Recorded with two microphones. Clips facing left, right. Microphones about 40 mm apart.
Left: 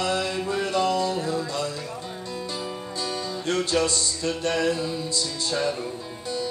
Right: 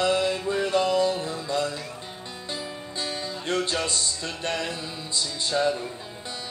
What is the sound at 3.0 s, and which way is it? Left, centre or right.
Music, right.